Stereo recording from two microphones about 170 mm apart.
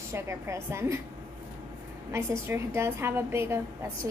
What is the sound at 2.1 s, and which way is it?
A woman's voice, 15° right (ahead or behind).